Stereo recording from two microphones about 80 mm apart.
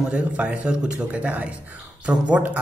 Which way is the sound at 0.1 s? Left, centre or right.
Centre.